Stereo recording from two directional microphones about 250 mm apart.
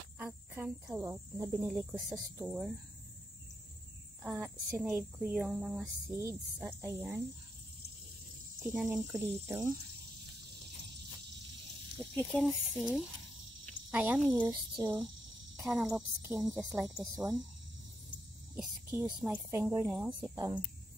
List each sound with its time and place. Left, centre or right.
0.2 s speech: centre
4.2 s speech: centre
8.6 s speech: centre
12.0 s speech: centre
15.5 s speech: centre
18.6 s speech: centre
20.3 s speech: centre